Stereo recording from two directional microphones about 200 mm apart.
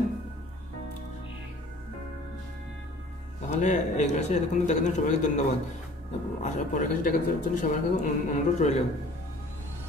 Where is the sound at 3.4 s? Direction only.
35° left (ahead or behind).